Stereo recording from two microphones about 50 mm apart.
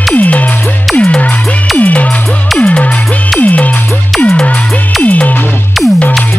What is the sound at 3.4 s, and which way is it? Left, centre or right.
Music, left.